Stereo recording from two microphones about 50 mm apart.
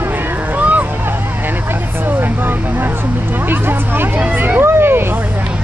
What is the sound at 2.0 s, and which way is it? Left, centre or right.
Vehicle, right.